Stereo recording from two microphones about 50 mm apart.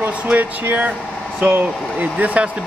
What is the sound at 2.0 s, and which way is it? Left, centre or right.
Speech, right.